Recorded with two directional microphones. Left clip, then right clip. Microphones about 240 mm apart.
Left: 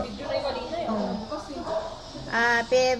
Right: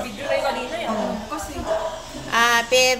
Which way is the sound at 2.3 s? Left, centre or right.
Right.